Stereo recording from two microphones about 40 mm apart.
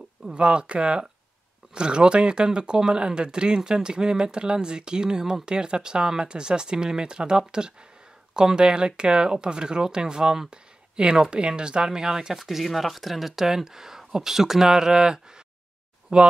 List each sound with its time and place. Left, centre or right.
0.3 s speech: right
12.4 s speech: centre; by 16.2 s right